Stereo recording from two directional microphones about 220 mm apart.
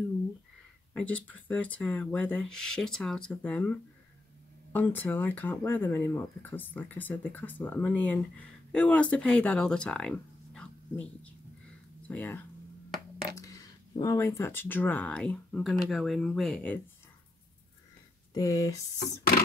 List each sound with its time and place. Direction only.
0.9 s speech: 5° left (ahead or behind)
4.7 s speech: 10° left (ahead or behind)
18.3 s speech: 15° left (ahead or behind)